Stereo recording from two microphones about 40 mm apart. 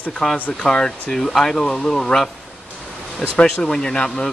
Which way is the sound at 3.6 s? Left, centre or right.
Centre.